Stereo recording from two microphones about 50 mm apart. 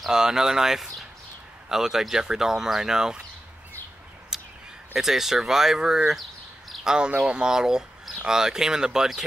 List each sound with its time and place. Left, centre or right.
0.1 s speech: centre
4.3 s a sound: centre
4.9 s speech: centre